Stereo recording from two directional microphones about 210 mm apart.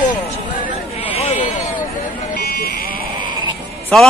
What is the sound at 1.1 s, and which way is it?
Sheep, 30° left (ahead or behind).